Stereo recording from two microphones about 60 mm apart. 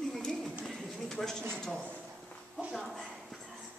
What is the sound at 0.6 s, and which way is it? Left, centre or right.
Bird, centre.